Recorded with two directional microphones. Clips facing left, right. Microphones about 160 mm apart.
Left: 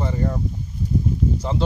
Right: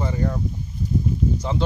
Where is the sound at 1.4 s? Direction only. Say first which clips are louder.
Left 1 dB; centre (ahead or behind).